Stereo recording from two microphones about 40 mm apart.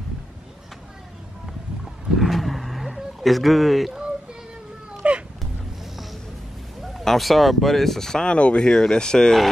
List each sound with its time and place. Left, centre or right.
2.1 s roaring cats: centre
5.0 s a sound: right
6.8 s speech: centre
8.3 s speech: left
8.6 s speech: centre